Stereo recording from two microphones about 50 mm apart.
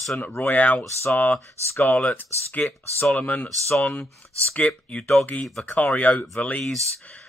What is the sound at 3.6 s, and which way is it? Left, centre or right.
Speech, centre.